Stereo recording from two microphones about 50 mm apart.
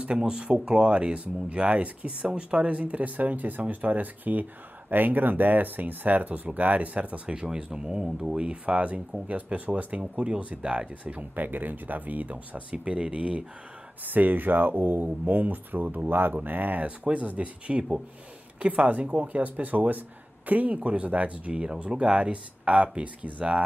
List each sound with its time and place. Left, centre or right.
0.0 s speech: centre
11.1 s speech: right
14.0 s speech: right
16.8 s speech: right